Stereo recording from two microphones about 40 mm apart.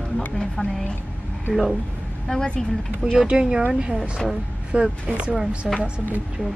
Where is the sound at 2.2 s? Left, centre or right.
Centre.